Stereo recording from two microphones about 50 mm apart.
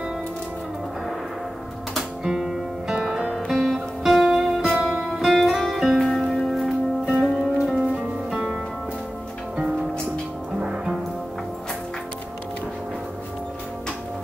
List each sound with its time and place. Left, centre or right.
2.2 s music: centre
3.3 s music: centre
10.6 s music: centre